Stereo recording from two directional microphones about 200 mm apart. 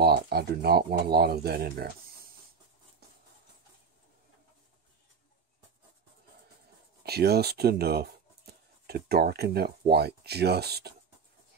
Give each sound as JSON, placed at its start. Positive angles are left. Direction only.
{"t": 0.0, "sound": "speech", "side_deg": -50}
{"t": 7.0, "sound": "speech", "side_deg": -55}